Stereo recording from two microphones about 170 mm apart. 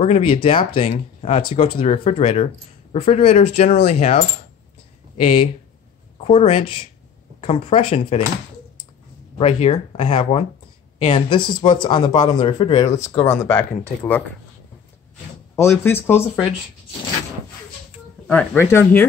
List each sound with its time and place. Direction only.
0.0 s speech: 35° left (ahead or behind)
6.2 s speech: 35° left (ahead or behind)
9.4 s speech: 40° left (ahead or behind)
13.4 s speech: 15° left (ahead or behind)
15.5 s speech: 15° left (ahead or behind)
18.2 s speech: 5° left (ahead or behind)